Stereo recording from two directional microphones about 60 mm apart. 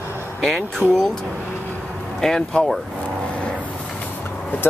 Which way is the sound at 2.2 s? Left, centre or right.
Centre.